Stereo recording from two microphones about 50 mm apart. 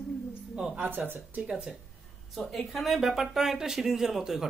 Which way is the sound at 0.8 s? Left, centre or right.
Right.